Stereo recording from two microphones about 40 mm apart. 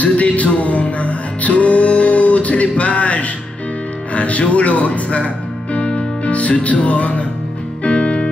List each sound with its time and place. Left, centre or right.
0.0 s music: left